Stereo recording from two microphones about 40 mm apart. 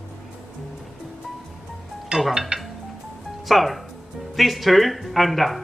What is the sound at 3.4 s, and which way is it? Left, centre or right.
Speech, centre.